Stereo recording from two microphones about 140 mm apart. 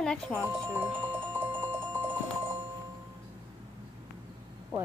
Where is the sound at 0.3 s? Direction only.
10° right (ahead or behind).